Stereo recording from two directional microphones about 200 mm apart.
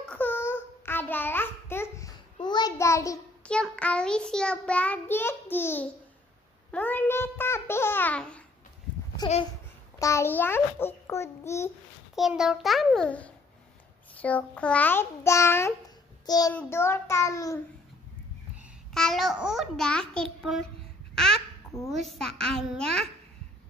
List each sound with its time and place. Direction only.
0.1 s babbling: 10° left (ahead or behind)
3.4 s child singing: 5° left (ahead or behind)
6.7 s a child's voice: 10° left (ahead or behind)
9.2 s a child's voice: 20° left (ahead or behind)
12.2 s child singing: centre (ahead or behind)
14.1 s a child's voice: 5° left (ahead or behind)
18.9 s child singing: centre (ahead or behind)
21.1 s babbling: 5° left (ahead or behind)
21.8 s child singing: centre (ahead or behind)